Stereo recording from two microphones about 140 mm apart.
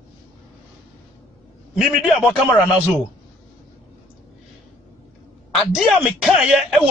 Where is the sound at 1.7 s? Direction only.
5° right (ahead or behind).